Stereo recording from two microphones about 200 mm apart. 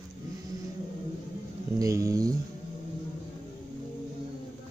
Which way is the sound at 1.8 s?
15° right (ahead or behind).